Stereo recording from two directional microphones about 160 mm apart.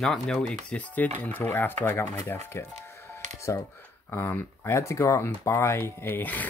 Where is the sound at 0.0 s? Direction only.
5° left (ahead or behind).